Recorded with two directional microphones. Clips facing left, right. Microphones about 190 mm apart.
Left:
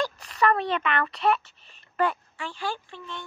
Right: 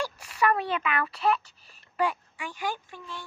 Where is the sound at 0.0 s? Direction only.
10° right (ahead or behind).